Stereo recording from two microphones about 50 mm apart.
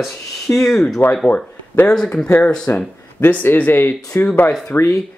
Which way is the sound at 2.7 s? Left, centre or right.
Left.